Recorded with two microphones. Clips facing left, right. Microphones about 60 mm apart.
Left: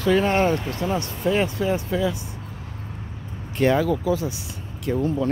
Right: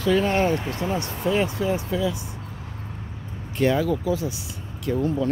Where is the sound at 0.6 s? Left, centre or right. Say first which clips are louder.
Left 1 dB; centre.